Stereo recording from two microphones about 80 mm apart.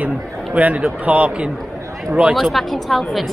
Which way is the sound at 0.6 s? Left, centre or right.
Centre.